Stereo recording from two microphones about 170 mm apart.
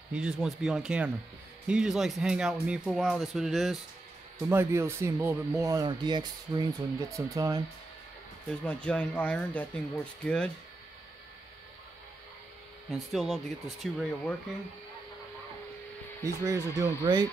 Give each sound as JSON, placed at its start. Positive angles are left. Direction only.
{"t": 0.1, "sound": "speech", "side_deg": -5}
{"t": 4.4, "sound": "speech", "side_deg": -15}
{"t": 8.5, "sound": "speech", "side_deg": 5}
{"t": 12.9, "sound": "speech", "side_deg": 0}
{"t": 16.4, "sound": "speech", "side_deg": -20}